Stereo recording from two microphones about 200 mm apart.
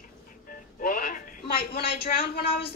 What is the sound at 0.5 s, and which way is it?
Speech, 45° left (ahead or behind).